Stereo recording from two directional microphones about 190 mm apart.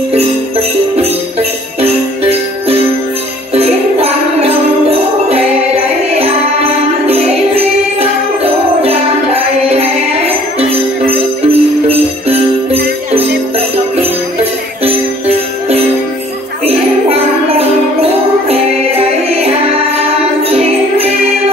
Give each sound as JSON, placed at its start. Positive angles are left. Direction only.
{"t": 3.5, "sound": "jingle bell", "side_deg": -30}
{"t": 6.1, "sound": "music", "side_deg": -30}
{"t": 14.4, "sound": "jingle bell", "side_deg": -30}
{"t": 16.6, "sound": "music", "side_deg": -30}